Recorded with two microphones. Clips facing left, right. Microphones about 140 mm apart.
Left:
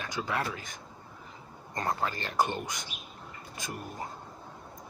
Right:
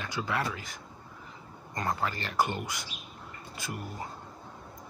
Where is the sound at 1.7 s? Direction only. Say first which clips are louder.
Even; 20° left (ahead or behind).